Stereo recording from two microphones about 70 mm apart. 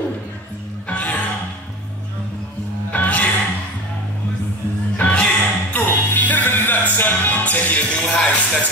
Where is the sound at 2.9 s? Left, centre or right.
Left.